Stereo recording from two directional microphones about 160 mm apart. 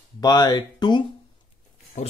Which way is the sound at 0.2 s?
25° left (ahead or behind).